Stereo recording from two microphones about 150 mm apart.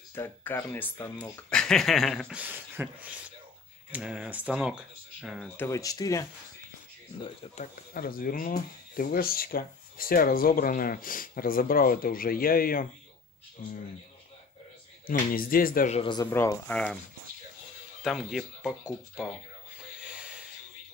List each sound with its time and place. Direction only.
0.1 s speech: 15° left (ahead or behind)
1.5 s a sound: 5° left (ahead or behind)
2.4 s speech: 10° right (ahead or behind)
5.6 s speech: 20° left (ahead or behind)
7.4 s speech: 40° left (ahead or behind)
7.9 s speech: 75° left (ahead or behind)
15.0 s speech: 75° left (ahead or behind)
16.3 s speech: 15° left (ahead or behind)
18.0 s a sound: centre (ahead or behind)
20.0 s a sound: 5° right (ahead or behind)